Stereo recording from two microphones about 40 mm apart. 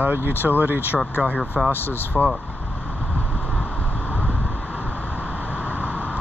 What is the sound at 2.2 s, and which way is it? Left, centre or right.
Speech, right.